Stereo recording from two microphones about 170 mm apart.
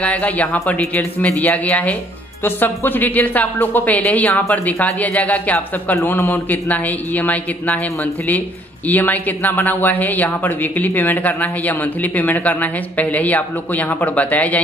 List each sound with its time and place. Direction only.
0.0 s speech: 10° left (ahead or behind)